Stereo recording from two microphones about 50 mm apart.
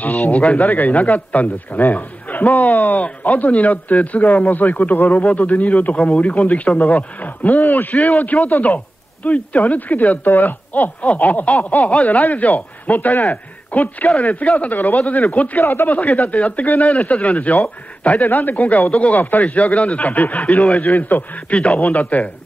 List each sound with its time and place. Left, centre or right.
0.0 s speech: left
16.0 s speech: left